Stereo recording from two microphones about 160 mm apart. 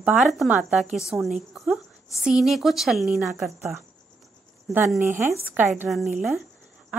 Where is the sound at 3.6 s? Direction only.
15° right (ahead or behind).